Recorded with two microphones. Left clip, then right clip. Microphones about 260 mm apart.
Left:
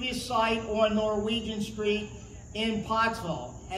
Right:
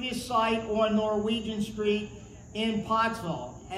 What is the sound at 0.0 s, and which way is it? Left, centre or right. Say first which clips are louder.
A man's voice: even; centre.